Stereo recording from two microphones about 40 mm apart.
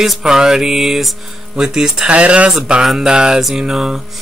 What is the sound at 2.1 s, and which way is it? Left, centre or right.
Speech, right.